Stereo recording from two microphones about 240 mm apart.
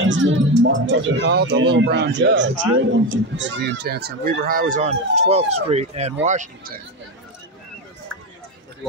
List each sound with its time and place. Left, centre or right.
0.0 s speech: right